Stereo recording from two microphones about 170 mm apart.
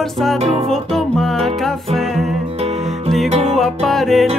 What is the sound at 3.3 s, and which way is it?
Music, 40° right (ahead or behind).